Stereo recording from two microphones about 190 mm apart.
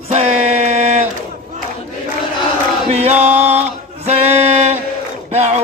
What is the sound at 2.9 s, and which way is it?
Chant, 35° right (ahead or behind).